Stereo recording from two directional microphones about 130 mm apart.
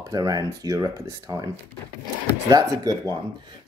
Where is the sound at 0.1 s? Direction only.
30° right (ahead or behind).